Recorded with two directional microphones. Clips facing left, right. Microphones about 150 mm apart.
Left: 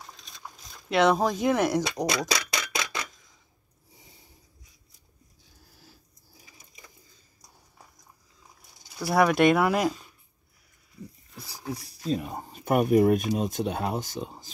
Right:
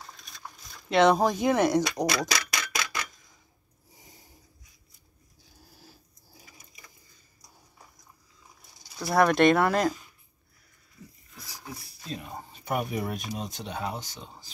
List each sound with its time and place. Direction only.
0.8 s speech: 5° left (ahead or behind)
2.0 s speech: 25° left (ahead or behind)
2.7 s a sound: 25° left (ahead or behind)
8.9 s speech: 10° left (ahead or behind)
11.3 s speech: 35° left (ahead or behind)